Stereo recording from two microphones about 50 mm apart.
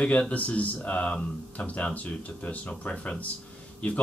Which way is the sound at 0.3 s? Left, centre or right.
Left.